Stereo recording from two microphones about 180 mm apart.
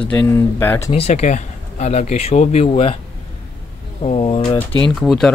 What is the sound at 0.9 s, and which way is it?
Speech, 35° left (ahead or behind).